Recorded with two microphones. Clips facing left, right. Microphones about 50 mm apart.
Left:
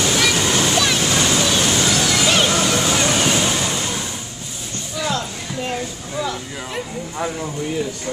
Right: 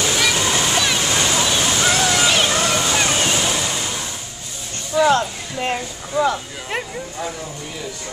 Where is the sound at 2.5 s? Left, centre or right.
Centre.